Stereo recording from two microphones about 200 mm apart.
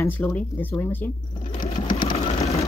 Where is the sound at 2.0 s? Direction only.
25° left (ahead or behind).